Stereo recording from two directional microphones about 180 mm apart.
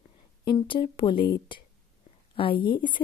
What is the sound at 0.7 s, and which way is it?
A woman's voice, 30° left (ahead or behind).